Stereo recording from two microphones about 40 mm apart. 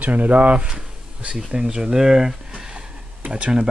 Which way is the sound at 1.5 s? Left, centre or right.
Right.